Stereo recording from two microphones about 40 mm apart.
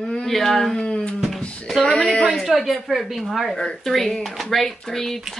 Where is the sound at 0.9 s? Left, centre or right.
Left.